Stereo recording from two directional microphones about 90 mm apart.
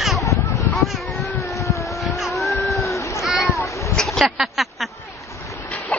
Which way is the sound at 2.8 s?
35° left (ahead or behind).